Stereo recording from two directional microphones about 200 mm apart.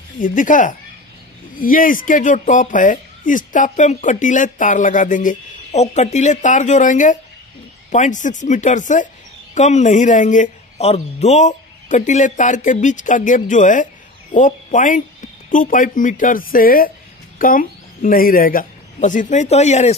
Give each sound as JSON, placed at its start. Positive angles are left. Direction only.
{"t": 0.2, "sound": "a woman's voice", "side_deg": 40}